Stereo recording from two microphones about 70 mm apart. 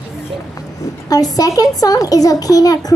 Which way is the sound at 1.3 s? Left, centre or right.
Left.